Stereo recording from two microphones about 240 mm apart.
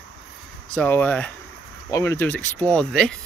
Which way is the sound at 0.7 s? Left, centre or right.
Centre.